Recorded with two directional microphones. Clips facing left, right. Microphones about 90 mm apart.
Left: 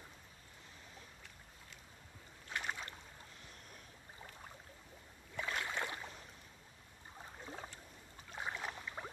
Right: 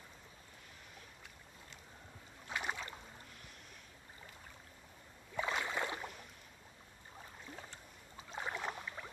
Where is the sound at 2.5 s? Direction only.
10° right (ahead or behind).